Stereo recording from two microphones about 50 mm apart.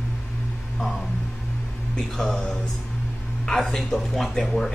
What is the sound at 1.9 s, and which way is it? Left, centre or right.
Speech, centre.